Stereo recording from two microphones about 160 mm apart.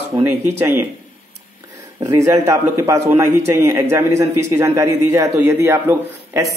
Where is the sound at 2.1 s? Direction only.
20° right (ahead or behind).